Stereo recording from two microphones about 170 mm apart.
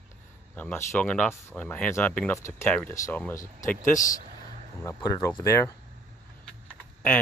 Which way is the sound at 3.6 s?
50° left (ahead or behind).